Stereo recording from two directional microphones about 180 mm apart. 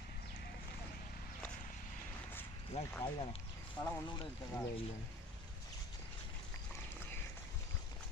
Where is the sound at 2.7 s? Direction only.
35° left (ahead or behind).